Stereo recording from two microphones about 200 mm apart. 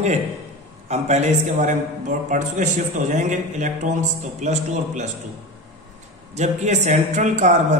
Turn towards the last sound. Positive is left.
turn(degrees=-35)  # may be behind; listen again after turning